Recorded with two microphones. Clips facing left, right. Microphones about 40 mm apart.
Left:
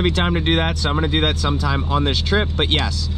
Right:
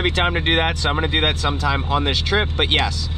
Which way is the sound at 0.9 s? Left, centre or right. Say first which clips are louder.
Even; right.